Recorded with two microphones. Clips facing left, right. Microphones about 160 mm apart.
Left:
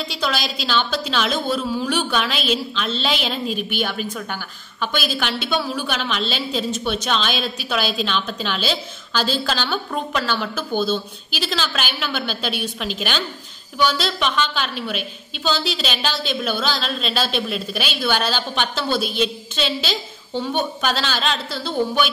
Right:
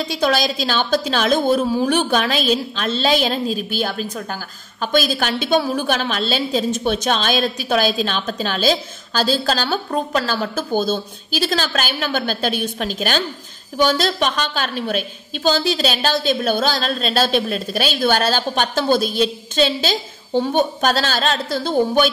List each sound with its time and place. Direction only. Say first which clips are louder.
0.1 s a woman's voice: right 9 dB; 45° right (ahead or behind)